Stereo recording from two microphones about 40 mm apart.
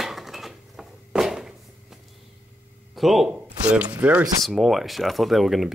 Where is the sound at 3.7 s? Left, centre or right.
Right.